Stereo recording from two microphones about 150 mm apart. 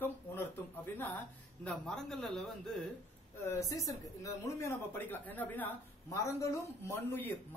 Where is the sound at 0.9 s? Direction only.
10° left (ahead or behind).